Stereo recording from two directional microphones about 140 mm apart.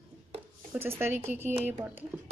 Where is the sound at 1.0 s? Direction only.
15° right (ahead or behind).